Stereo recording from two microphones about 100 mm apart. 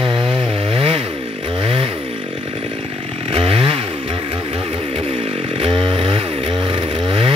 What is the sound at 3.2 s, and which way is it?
Chainsaw, 65° right (ahead or behind).